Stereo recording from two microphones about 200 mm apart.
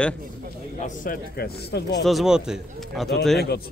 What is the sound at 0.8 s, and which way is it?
Speech, 45° left (ahead or behind).